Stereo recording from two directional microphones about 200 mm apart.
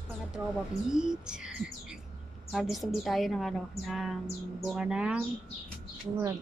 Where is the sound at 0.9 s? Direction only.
5° right (ahead or behind).